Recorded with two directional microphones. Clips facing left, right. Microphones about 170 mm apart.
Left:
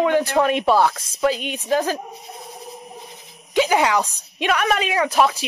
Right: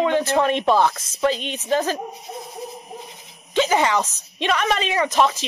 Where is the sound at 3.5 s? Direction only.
10° left (ahead or behind).